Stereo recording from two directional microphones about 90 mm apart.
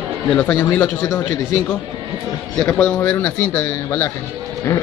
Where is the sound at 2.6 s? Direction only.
15° left (ahead or behind).